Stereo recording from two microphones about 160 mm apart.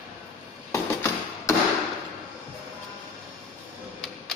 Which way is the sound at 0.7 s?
20° left (ahead or behind).